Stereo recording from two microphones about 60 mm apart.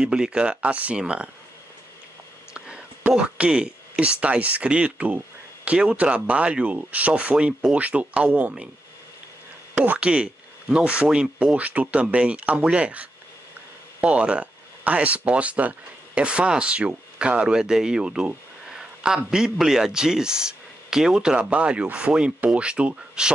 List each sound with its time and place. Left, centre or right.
0.0 s speech: centre
2.5 s a sound: centre
3.1 s speech: centre
9.8 s speech: right